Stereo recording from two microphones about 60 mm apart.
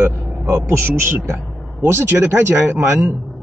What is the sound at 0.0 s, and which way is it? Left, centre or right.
A man's voice, right.